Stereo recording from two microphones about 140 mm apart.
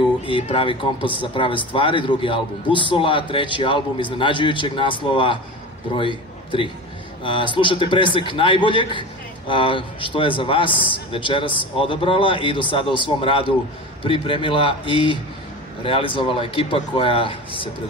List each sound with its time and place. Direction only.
0.3 s a man's voice: 40° left (ahead or behind)